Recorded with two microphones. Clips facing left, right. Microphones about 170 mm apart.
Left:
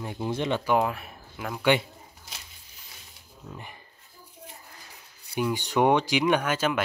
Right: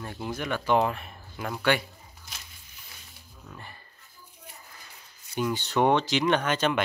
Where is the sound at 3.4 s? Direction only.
15° left (ahead or behind).